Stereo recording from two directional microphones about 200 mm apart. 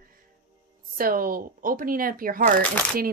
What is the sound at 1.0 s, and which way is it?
A woman's voice, 45° right (ahead or behind).